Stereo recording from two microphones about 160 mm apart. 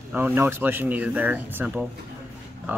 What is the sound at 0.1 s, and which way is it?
Speech, 15° right (ahead or behind).